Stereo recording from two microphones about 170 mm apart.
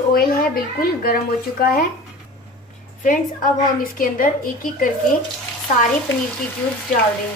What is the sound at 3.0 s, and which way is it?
Speech, 55° left (ahead or behind).